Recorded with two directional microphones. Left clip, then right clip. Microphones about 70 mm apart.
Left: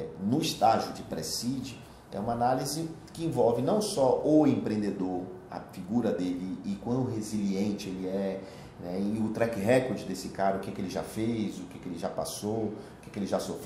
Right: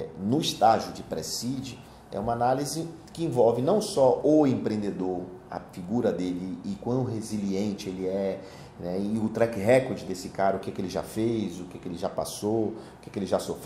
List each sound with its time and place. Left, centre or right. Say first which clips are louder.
0.3 s speech: right 3 dB; right